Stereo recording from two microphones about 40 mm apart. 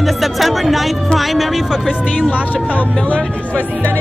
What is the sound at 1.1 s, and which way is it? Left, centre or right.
Speech, centre.